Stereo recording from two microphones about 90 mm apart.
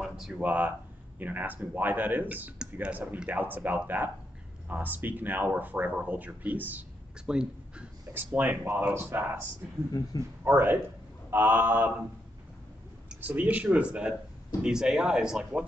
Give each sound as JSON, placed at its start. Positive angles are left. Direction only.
{"t": 0.0, "sound": "a sound", "side_deg": -5}
{"t": 0.4, "sound": "speech", "side_deg": -20}
{"t": 8.1, "sound": "speech", "side_deg": -20}
{"t": 9.9, "sound": "speech", "side_deg": 35}
{"t": 10.4, "sound": "speech", "side_deg": -25}
{"t": 13.1, "sound": "speech", "side_deg": -20}